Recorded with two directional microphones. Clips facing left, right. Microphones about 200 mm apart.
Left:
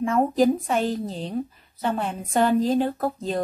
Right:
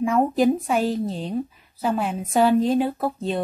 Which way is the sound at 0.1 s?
10° right (ahead or behind).